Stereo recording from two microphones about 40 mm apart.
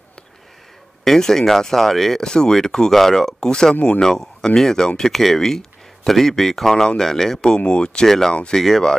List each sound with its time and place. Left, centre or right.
1.0 s speech: centre
2.2 s speech: centre
3.3 s speech: centre
7.4 s speech: left